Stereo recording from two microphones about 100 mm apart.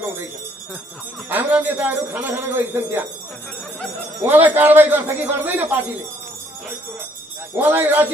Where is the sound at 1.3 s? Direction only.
20° right (ahead or behind).